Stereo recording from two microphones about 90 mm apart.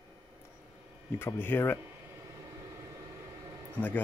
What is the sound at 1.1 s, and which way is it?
Speech, 25° left (ahead or behind).